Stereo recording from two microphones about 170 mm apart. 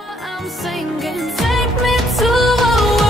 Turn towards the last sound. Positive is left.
turn(degrees=0)  # may be behind; listen again after turning